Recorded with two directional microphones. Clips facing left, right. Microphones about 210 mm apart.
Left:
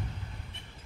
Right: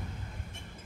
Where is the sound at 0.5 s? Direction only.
45° right (ahead or behind).